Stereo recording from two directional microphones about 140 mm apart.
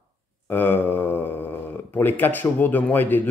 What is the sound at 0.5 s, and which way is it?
Speech, 15° left (ahead or behind).